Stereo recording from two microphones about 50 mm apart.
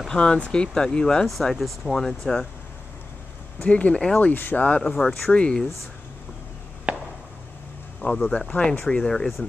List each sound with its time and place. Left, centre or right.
0.1 s speech: centre
1.2 s speech: centre
1.9 s speech: centre
3.6 s speech: left
3.9 s speech: centre
4.2 s speech: left
4.6 s speech: left
4.9 s speech: centre
5.3 s speech: centre
6.9 s a sound: right
8.3 s speech: left